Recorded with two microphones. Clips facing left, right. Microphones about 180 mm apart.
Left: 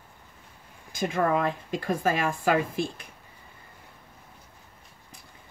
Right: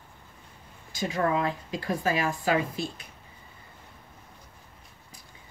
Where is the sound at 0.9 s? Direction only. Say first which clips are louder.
Left 2 dB; 55° left (ahead or behind).